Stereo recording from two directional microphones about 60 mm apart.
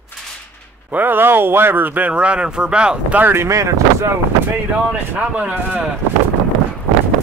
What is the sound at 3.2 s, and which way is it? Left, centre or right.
Speech, right.